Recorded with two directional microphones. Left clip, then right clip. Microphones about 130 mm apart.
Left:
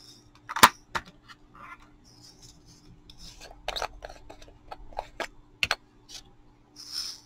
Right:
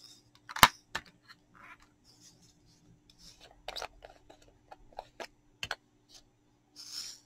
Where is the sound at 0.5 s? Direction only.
30° right (ahead or behind).